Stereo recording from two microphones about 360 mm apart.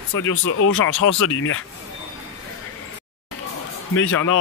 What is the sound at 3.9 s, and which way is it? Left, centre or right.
Speech, left.